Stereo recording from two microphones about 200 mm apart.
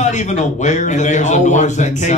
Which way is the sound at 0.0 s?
35° left (ahead or behind).